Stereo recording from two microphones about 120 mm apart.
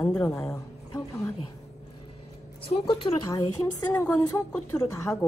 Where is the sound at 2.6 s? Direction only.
50° left (ahead or behind).